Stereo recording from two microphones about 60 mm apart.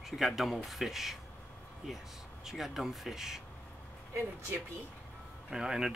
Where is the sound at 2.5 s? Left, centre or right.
Centre.